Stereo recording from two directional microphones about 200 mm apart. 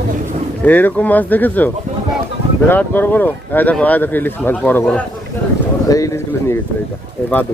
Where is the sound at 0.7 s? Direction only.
10° left (ahead or behind).